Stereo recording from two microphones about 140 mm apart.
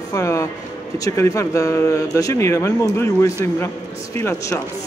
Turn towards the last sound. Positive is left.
turn(degrees=20)  # may be behind; listen again after turning